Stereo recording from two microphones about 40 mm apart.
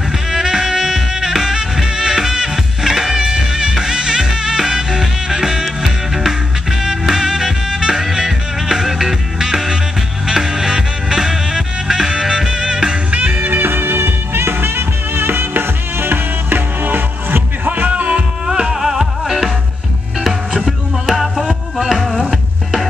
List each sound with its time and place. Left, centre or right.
0.3 s music: centre
13.1 s music: right
13.4 s music: right
18.5 s music: centre
21.1 s music: centre